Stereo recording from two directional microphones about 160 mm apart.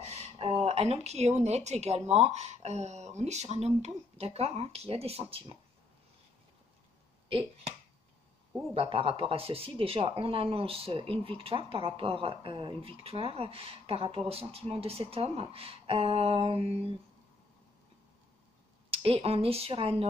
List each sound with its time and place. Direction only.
0.1 s speech: 40° right (ahead or behind)
7.2 s speech: 35° right (ahead or behind)
8.7 s speech: 35° right (ahead or behind)
18.9 s speech: 35° right (ahead or behind)